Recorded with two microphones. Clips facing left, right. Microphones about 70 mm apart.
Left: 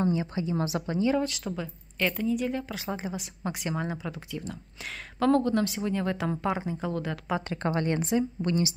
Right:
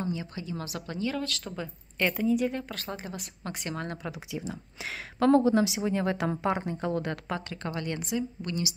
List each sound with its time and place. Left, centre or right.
0.0 s speech: left
1.4 s speech: centre
2.7 s speech: centre
4.1 s speech: centre
7.4 s speech: left